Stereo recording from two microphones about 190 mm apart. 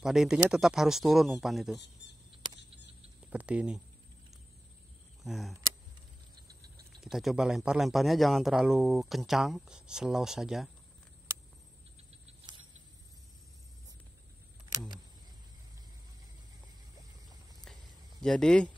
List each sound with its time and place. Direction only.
0.0 s a man's voice: 5° right (ahead or behind)
3.3 s a man's voice: 5° right (ahead or behind)
5.2 s speech: centre (ahead or behind)
7.0 s a man's voice: centre (ahead or behind)
12.1 s a sound: 30° right (ahead or behind)
14.7 s a sound: 20° right (ahead or behind)
18.2 s a man's voice: 5° left (ahead or behind)